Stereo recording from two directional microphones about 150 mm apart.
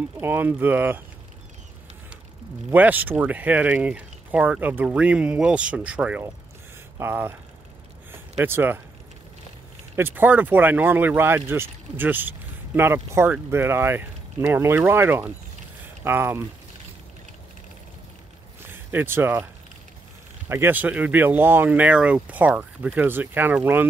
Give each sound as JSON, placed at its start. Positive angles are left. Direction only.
{"t": 0.2, "sound": "speech", "side_deg": -15}
{"t": 2.7, "sound": "speech", "side_deg": -10}
{"t": 8.1, "sound": "a sound", "side_deg": -15}
{"t": 9.9, "sound": "speech", "side_deg": -15}
{"t": 18.7, "sound": "speech", "side_deg": -15}
{"t": 20.4, "sound": "speech", "side_deg": -15}